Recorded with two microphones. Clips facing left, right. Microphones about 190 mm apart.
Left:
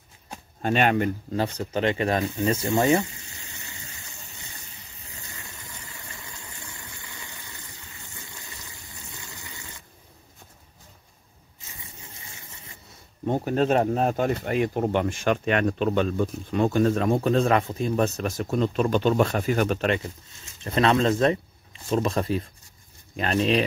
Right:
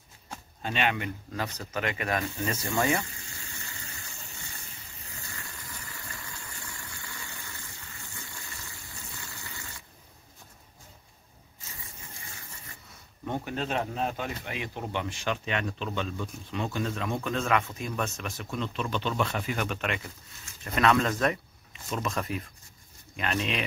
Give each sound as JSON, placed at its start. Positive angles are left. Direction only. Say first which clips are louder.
{"t": 0.6, "sound": "speech", "louder": "left 8 dB", "side_deg": 50}
{"t": 5.2, "sound": "pump", "louder": "left 1 dB", "side_deg": 20}
{"t": 13.2, "sound": "speech", "louder": "left 9 dB", "side_deg": 35}